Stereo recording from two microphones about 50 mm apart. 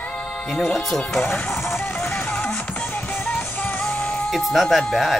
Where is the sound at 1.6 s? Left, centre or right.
Left.